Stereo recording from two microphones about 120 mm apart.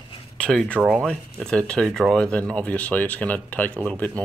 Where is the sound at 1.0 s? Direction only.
5° left (ahead or behind).